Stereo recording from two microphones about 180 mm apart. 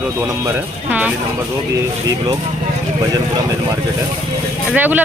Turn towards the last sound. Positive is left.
turn(degrees=-10)  # may be behind; listen again after turning